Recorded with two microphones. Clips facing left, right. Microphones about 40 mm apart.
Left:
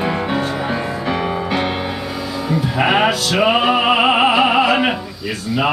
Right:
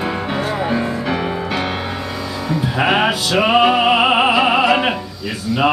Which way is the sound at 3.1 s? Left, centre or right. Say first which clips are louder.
Left 1 dB; centre.